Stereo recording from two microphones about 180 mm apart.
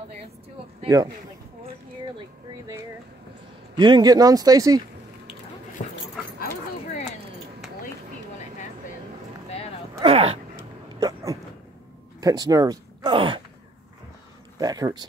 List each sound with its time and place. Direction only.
0.7 s speech: 20° right (ahead or behind)
3.7 s speech: 25° right (ahead or behind)
5.8 s dog: 40° left (ahead or behind)
9.9 s a sound: 30° right (ahead or behind)
11.0 s a sound: 20° right (ahead or behind)
12.2 s speech: 20° right (ahead or behind)
14.6 s speech: 20° right (ahead or behind)